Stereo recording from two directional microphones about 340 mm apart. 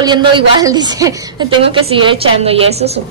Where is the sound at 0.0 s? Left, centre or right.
Centre.